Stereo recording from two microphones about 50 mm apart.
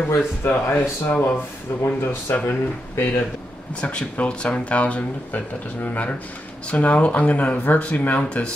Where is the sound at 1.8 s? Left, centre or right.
Left.